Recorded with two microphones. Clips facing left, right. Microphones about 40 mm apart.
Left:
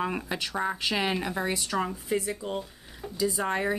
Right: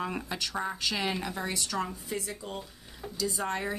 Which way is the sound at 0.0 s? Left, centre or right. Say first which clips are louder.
Left 3 dB; centre.